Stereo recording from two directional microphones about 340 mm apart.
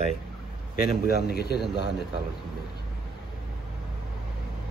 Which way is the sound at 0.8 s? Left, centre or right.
Left.